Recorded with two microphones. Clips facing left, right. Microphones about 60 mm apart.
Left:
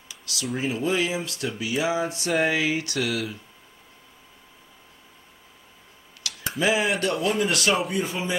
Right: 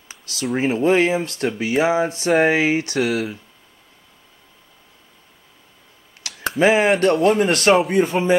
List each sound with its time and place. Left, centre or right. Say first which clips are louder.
0.1 s a sound: right 6 dB; right
0.6 s speech: right 8 dB; right
6.2 s computer keyboard: even; right
6.6 s speech: right 8 dB; right
7.7 s a man's voice: right 9 dB; right